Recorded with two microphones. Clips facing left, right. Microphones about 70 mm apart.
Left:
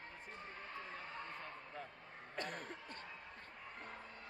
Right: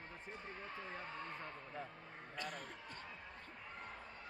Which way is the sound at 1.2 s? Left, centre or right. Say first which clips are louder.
Right 1 dB; centre.